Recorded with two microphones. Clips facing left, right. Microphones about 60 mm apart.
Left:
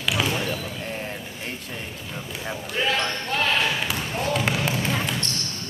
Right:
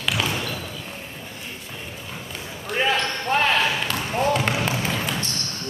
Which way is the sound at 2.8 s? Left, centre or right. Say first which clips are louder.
Right 2 dB; right.